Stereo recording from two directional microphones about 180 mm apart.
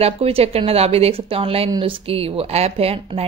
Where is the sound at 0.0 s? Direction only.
35° right (ahead or behind).